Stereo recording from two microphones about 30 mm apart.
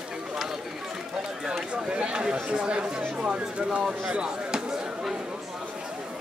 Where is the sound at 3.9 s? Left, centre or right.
Right.